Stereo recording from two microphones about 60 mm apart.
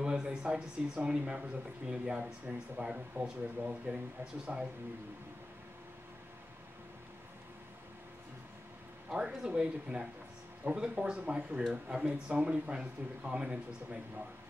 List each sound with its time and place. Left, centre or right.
0.0 s speech: centre
9.1 s speech: centre